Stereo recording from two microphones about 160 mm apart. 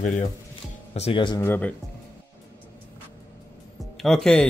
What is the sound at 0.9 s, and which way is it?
Speech, 40° left (ahead or behind).